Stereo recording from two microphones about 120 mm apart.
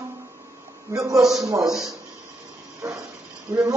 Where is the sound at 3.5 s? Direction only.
25° right (ahead or behind).